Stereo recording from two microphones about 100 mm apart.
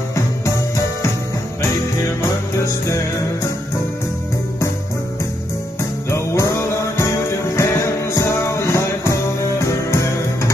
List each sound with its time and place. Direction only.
6.0 s music: 30° left (ahead or behind)